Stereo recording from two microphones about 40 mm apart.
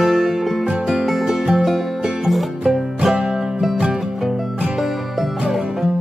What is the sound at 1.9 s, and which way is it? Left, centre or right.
Music, centre.